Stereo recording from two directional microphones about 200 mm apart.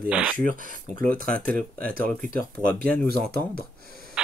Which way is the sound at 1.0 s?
45° right (ahead or behind).